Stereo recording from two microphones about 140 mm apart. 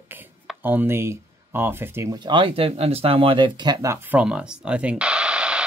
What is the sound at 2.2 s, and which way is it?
Speech, 35° right (ahead or behind).